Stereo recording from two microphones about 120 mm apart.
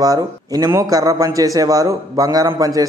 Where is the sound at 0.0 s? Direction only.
30° right (ahead or behind).